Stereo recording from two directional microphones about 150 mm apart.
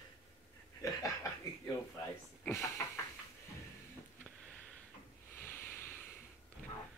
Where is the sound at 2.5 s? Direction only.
15° left (ahead or behind).